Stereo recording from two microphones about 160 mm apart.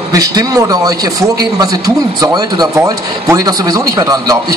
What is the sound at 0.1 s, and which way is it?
A woman's voice, 20° right (ahead or behind).